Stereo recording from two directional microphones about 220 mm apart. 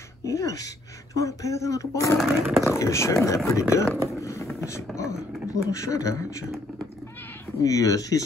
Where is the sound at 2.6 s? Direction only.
15° left (ahead or behind).